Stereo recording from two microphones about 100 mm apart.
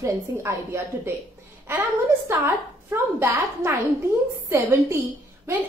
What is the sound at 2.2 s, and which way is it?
A woman's voice, 25° right (ahead or behind).